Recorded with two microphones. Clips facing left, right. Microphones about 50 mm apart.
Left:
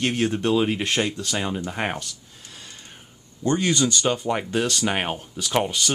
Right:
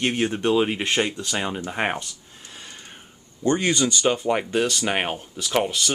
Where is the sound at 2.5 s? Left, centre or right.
Right.